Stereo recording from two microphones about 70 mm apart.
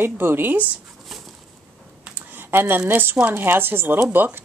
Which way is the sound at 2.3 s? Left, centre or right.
Right.